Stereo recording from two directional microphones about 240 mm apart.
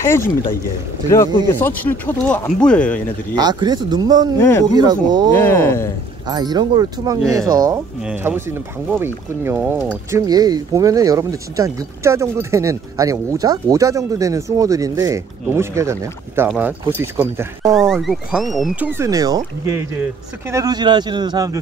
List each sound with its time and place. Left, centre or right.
1.0 s speech: centre
3.3 s speech: centre
4.4 s speech: centre
4.7 s speech: centre
5.3 s speech: centre
6.2 s speech: centre